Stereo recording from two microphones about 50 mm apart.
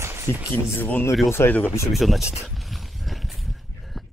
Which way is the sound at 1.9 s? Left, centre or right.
Centre.